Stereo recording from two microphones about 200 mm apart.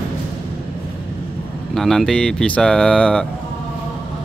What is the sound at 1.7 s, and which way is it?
Speech, centre (ahead or behind).